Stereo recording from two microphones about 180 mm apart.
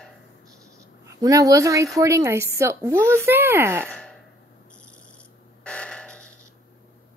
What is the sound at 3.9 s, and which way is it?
Gasp, 5° left (ahead or behind).